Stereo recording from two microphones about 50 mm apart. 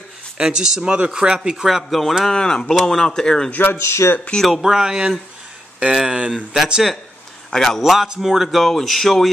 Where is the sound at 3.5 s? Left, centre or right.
Left.